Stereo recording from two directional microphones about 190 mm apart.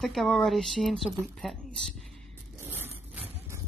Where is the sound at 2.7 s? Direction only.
10° right (ahead or behind).